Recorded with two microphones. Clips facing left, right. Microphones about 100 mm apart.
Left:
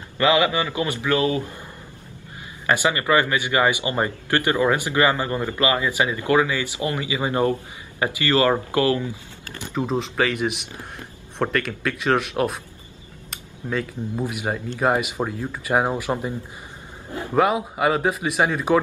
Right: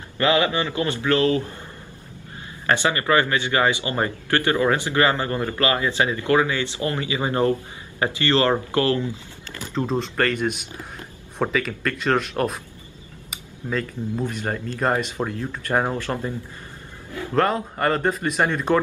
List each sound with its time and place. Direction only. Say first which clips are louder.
0.2 s speech: left 1 dB; 20° left (ahead or behind)
2.6 s speech: even; 15° left (ahead or behind)
9.8 s speech: even; 5° left (ahead or behind)
13.3 s cutlery: even; centre (ahead or behind)
14.2 s speech: left 3 dB; 10° left (ahead or behind)